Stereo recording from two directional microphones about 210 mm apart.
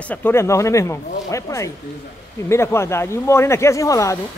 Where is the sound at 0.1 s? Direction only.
10° left (ahead or behind).